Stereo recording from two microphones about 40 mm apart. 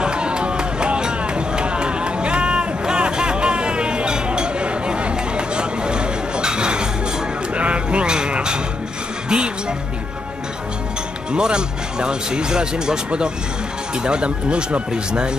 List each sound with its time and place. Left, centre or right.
0.0 s run: right
7.5 s music: right
11.3 s speech: right